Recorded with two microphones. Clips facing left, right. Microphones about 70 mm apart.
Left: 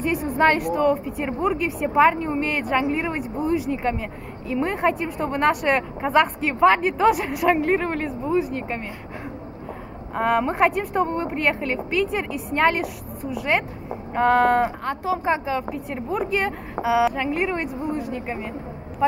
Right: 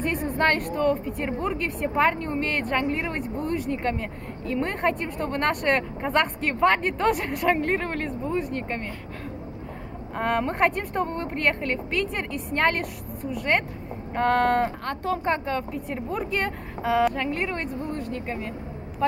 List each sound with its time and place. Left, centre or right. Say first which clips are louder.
0.0 s a woman's voice: left 4 dB; centre
10.1 s a woman's voice: left 4 dB; centre